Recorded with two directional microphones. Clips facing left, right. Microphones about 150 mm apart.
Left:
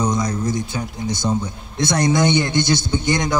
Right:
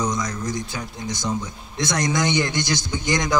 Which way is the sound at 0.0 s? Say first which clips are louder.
Left 4 dB; 25° left (ahead or behind).